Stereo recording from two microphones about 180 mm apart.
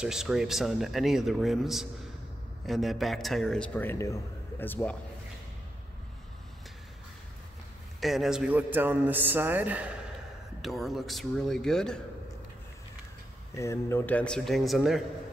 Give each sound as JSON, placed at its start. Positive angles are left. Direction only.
{"t": 0.0, "sound": "a man's voice", "side_deg": -5}
{"t": 8.0, "sound": "a man's voice", "side_deg": 0}
{"t": 13.6, "sound": "a man's voice", "side_deg": 15}